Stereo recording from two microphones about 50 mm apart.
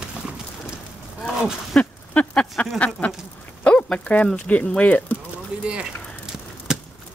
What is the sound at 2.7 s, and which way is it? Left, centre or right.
Speech, left.